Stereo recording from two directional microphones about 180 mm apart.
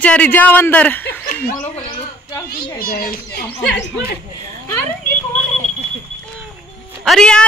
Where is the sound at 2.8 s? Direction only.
55° left (ahead or behind).